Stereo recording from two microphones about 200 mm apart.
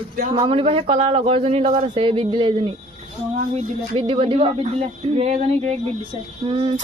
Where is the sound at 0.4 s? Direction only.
25° right (ahead or behind).